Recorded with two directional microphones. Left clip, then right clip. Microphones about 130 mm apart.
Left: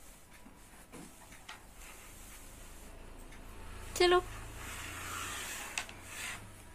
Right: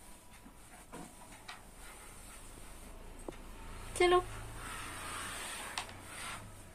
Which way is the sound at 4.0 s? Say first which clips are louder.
Left 1 dB; 15° left (ahead or behind).